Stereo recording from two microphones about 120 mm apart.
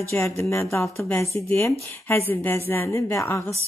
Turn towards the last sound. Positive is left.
turn(degrees=25)  # may be behind; listen again after turning